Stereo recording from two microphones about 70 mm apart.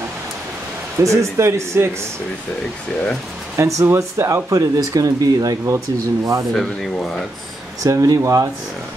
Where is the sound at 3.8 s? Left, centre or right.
Right.